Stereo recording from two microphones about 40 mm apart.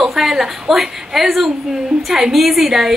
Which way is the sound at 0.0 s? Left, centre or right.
Centre.